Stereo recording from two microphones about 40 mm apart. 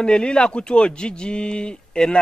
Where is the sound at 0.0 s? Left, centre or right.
Left.